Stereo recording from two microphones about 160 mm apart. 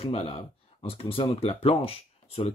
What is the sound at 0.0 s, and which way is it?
Speech, 35° left (ahead or behind).